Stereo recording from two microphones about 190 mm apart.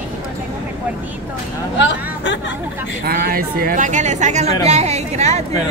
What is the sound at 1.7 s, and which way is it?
Speech, 70° left (ahead or behind).